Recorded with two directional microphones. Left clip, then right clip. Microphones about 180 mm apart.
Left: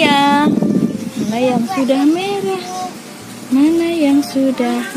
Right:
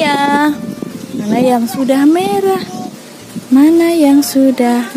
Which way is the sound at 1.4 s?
35° right (ahead or behind).